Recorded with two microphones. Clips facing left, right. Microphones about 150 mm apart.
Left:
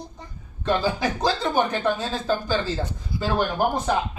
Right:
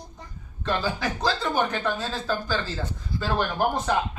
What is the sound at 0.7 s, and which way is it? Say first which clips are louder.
Speech: left 4 dB; 15° left (ahead or behind).